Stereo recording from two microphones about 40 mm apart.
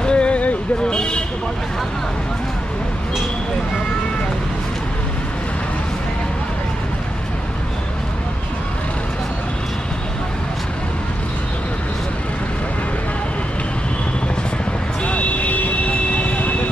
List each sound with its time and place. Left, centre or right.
0.0 s a sound: left
0.8 s speech: left
15.0 s vehicle: left